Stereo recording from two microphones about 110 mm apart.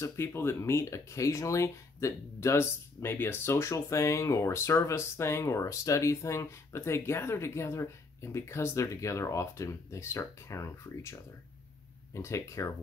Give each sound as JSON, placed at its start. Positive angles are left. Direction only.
{"t": 0.0, "sound": "speech", "side_deg": 25}